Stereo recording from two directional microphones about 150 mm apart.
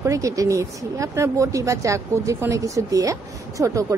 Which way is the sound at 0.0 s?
20° right (ahead or behind).